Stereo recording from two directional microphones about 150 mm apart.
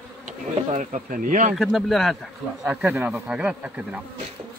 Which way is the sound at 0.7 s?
60° right (ahead or behind).